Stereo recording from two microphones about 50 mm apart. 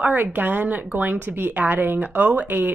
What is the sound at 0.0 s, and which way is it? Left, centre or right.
Speech, right.